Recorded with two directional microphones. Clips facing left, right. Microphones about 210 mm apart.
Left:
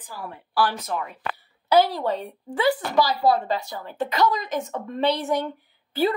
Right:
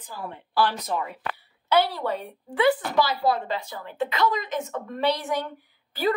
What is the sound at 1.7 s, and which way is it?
Speech, 40° left (ahead or behind).